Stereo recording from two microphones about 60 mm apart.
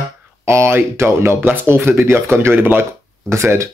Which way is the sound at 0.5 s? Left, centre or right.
Right.